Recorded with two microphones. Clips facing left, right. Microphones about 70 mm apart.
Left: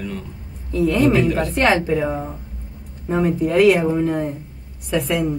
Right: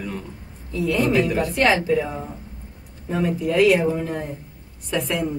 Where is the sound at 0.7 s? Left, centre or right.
Left.